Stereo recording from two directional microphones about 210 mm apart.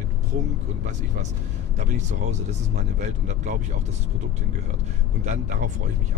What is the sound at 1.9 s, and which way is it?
Speech, 35° right (ahead or behind).